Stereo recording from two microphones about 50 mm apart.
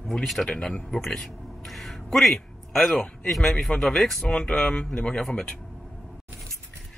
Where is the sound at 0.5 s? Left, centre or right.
Centre.